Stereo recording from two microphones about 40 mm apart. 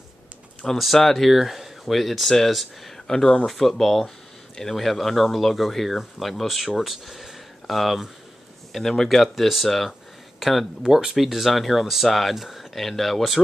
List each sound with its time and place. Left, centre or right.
0.9 s speech: centre
3.1 s speech: centre
8.9 s speech: centre
9.2 s speech: centre
10.8 s speech: centre